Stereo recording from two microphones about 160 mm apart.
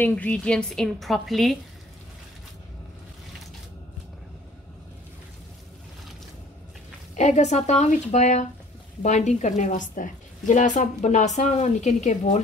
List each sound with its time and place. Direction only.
0.0 s a woman's voice: 10° left (ahead or behind)
7.2 s a woman's voice: 45° left (ahead or behind)